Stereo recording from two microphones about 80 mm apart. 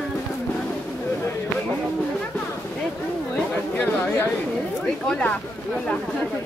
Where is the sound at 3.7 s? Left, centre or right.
Left.